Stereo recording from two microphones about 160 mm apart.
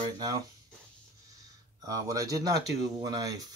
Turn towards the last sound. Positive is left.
turn(degrees=-25)  # may be behind; listen again after turning